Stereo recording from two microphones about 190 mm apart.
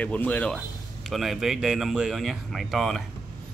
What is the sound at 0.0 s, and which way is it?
Speech, 10° left (ahead or behind).